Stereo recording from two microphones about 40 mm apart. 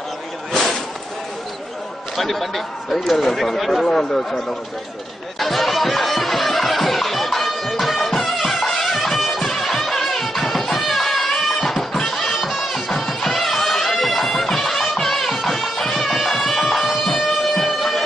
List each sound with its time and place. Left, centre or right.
2.1 s speech: centre
5.4 s music: centre
17.0 s siren: centre